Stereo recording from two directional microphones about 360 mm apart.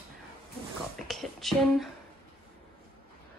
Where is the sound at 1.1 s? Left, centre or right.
Centre.